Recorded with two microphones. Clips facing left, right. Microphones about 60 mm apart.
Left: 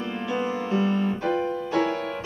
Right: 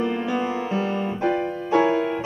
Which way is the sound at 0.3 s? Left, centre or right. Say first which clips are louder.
Right 2 dB; right.